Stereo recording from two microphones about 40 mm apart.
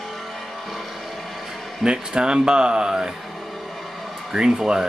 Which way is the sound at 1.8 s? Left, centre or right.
Right.